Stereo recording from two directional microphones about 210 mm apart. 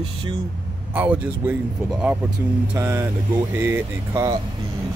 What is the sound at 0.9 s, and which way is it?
Speech, 10° right (ahead or behind).